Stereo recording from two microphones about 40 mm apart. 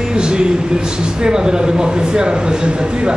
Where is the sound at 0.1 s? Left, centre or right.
Right.